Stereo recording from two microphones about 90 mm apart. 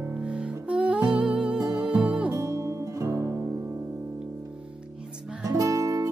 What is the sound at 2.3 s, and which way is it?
Music, 40° right (ahead or behind).